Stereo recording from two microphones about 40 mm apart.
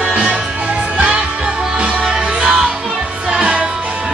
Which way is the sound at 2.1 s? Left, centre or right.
Centre.